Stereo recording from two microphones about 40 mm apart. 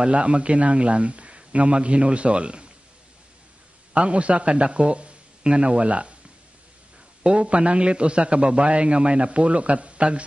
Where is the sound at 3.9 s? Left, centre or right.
Right.